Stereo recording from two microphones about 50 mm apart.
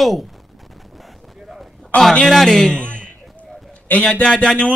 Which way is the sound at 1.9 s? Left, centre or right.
Left.